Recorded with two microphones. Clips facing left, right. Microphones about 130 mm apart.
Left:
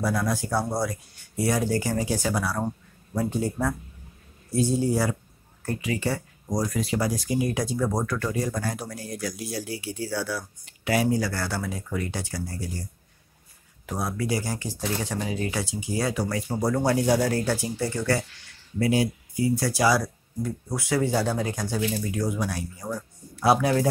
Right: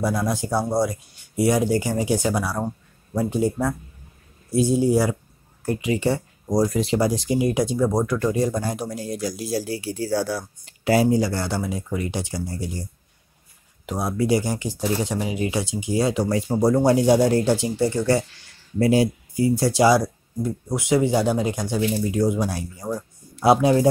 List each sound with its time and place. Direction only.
0.0 s speech: 20° right (ahead or behind)
13.8 s speech: 20° right (ahead or behind)
18.8 s speech: 35° right (ahead or behind)